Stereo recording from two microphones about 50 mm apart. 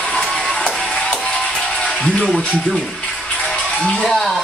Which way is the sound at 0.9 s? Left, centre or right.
Centre.